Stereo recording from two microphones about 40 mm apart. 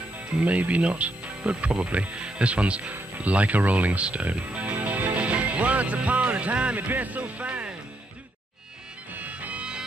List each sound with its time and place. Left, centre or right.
0.4 s speech: right
4.7 s music: right
6.9 s speech: right
9.1 s music: right